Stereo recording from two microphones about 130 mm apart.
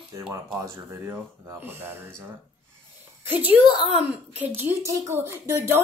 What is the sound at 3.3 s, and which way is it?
Speech, 15° right (ahead or behind).